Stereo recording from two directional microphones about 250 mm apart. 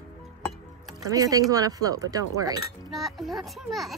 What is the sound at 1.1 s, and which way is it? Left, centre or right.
Speech, centre.